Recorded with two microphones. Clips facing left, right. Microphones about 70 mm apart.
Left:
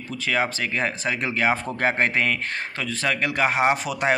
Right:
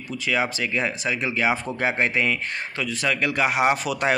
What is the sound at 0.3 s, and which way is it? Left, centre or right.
Speech, left.